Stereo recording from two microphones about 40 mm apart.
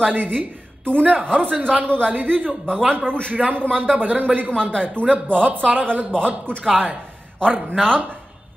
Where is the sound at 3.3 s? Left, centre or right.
Right.